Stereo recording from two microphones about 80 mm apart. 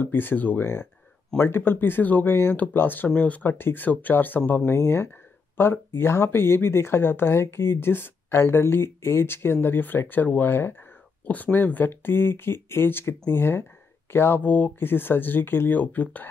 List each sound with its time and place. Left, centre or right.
0.0 s speech: left